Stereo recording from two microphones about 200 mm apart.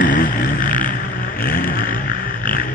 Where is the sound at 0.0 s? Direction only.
40° left (ahead or behind).